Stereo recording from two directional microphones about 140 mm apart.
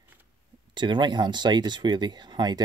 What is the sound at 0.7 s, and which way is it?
Speech, 35° right (ahead or behind).